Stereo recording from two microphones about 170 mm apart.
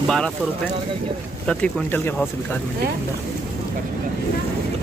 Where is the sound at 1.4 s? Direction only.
5° left (ahead or behind).